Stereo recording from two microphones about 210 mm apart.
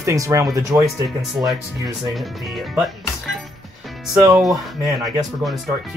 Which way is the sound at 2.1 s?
Centre (ahead or behind).